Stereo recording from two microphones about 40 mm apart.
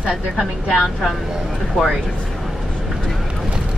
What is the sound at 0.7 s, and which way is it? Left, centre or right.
Speech, centre.